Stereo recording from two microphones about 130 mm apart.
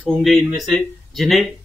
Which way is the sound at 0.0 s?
5° left (ahead or behind).